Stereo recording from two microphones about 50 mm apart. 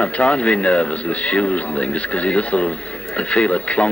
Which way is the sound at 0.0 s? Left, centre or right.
Left.